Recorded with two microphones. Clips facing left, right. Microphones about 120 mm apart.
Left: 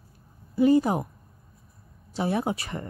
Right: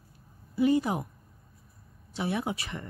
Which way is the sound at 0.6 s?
40° left (ahead or behind).